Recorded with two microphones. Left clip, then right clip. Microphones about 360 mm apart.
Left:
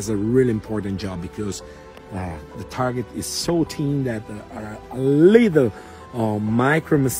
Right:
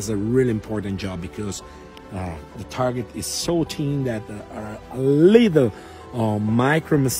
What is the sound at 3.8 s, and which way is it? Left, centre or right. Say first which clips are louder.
Speech: left 1 dB; centre.